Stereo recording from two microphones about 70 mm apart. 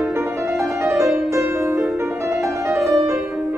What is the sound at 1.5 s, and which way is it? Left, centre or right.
Music, right.